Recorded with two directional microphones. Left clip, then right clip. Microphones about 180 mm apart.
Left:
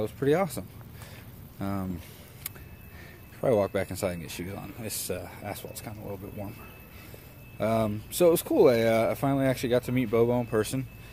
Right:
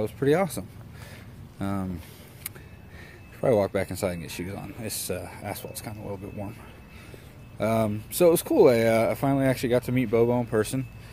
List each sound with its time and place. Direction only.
0.0 s speech: 10° right (ahead or behind)
1.6 s a sound: 5° right (ahead or behind)
3.3 s speech: 10° right (ahead or behind)
7.5 s speech: 5° right (ahead or behind)